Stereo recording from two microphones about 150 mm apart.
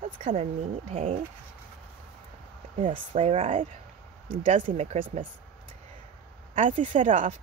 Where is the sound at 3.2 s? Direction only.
40° right (ahead or behind).